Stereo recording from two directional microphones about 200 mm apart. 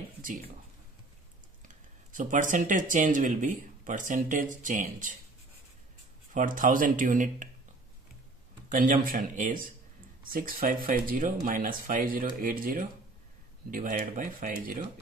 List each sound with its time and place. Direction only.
0.2 s speech: 40° right (ahead or behind)
1.7 s speech: 40° right (ahead or behind)
6.3 s speech: 40° right (ahead or behind)
8.6 s a sound: 40° right (ahead or behind)
9.0 s speech: 40° right (ahead or behind)